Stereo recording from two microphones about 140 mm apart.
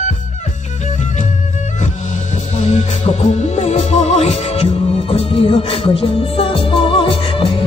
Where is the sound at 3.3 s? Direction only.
50° left (ahead or behind).